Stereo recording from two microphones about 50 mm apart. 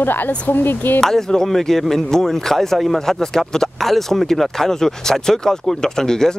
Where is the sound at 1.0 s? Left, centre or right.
Centre.